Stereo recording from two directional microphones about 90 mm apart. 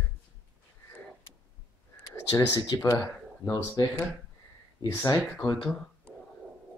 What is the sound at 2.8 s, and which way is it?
Speech, 40° left (ahead or behind).